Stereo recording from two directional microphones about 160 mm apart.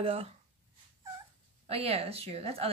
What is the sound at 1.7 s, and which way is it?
A woman's voice, 40° right (ahead or behind).